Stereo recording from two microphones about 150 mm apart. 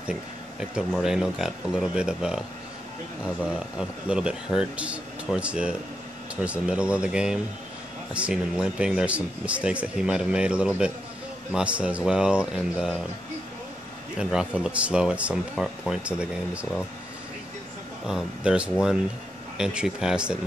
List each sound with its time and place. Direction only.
0.0 s speech: 5° right (ahead or behind)
3.5 s speech: 5° right (ahead or behind)
14.1 s speech: 5° right (ahead or behind)
18.0 s speech: 5° right (ahead or behind)